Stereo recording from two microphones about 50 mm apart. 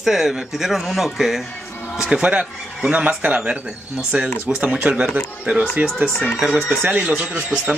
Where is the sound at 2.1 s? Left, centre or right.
Right.